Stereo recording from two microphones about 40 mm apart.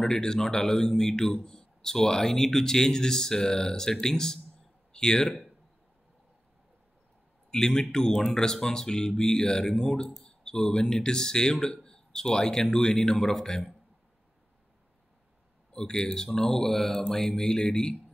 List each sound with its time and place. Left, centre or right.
0.1 s a man's voice: centre
7.5 s a man's voice: centre
15.7 s a man's voice: centre